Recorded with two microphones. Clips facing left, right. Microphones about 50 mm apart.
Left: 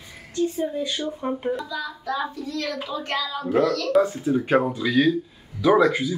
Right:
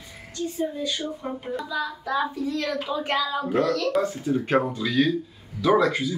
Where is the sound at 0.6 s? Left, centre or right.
Centre.